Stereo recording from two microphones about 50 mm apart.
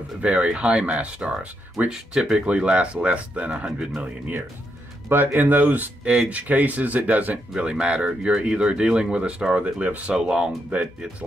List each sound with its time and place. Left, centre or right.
0.2 s speech: right
1.9 s speech: centre
5.1 s speech: right
7.5 s speech: centre
10.1 s speech: centre
10.7 s speech: right